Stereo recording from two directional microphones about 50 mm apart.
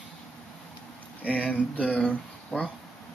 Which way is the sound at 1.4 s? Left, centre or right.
Left.